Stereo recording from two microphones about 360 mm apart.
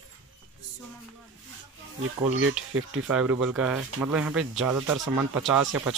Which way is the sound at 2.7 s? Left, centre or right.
Right.